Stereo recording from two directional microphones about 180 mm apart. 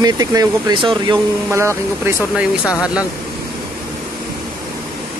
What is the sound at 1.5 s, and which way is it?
Speech, 15° right (ahead or behind).